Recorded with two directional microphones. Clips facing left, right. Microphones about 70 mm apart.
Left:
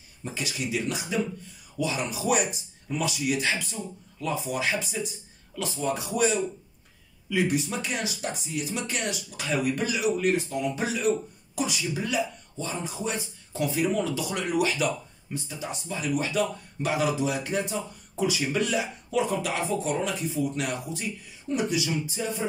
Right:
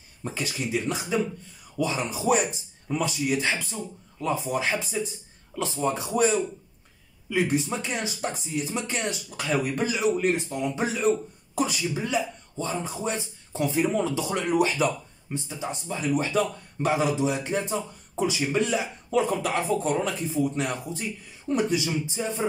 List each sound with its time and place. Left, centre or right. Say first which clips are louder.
0.2 s a man's voice: right 2 dB; right